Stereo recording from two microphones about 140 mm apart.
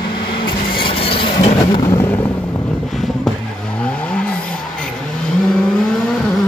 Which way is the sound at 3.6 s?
10° left (ahead or behind).